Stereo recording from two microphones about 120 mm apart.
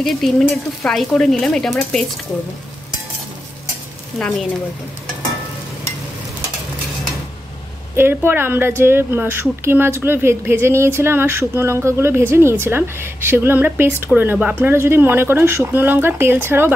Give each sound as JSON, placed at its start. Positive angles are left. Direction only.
{"t": 0.0, "sound": "speech", "side_deg": 5}
{"t": 4.2, "sound": "speech", "side_deg": 0}
{"t": 7.9, "sound": "speech", "side_deg": -20}